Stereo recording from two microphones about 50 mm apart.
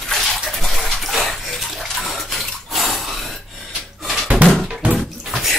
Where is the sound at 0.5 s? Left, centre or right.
Centre.